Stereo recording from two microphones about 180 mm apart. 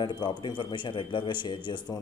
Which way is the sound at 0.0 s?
25° left (ahead or behind).